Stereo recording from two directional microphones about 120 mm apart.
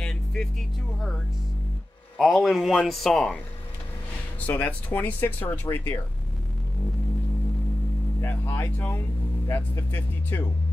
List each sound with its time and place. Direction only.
0.0 s vehicle: 5° left (ahead or behind)
2.1 s speech: centre (ahead or behind)
4.4 s speech: 15° left (ahead or behind)
8.2 s speech: 15° left (ahead or behind)